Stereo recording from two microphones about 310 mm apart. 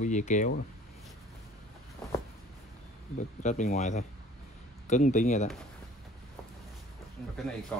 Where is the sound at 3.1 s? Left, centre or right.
Left.